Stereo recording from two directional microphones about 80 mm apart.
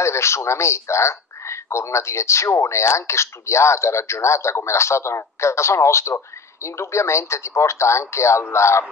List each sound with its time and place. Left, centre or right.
0.0 s speech: left